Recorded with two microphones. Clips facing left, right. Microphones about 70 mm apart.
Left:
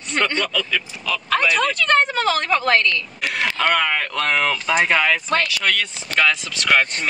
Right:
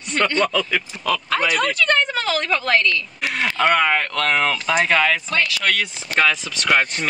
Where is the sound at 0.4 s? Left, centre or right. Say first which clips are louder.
Right 3 dB; right.